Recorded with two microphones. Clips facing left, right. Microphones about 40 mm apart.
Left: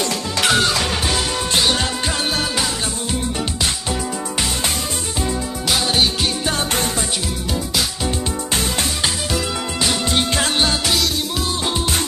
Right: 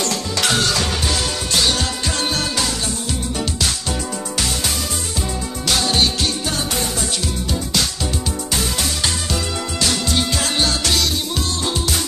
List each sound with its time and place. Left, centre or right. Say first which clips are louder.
0.5 s music: left 2 dB; centre
5.7 s music: even; centre
8.5 s music: left 1 dB; left
10.0 s music: left 1 dB; left
10.8 s music: even; centre